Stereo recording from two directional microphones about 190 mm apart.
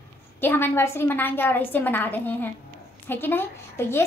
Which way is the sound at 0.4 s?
10° left (ahead or behind).